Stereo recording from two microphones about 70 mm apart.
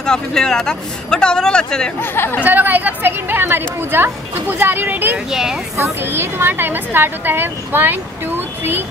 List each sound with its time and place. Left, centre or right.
0.0 s a man's voice: centre
2.0 s speech: left
2.4 s a woman's voice: right
5.3 s speech: centre
5.9 s a woman's voice: right